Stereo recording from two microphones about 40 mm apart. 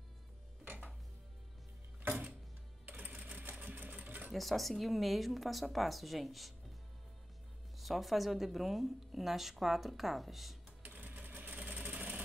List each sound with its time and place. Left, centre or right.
2.8 s sewing machine: right
4.3 s speech: centre
7.8 s speech: centre
10.8 s sewing machine: right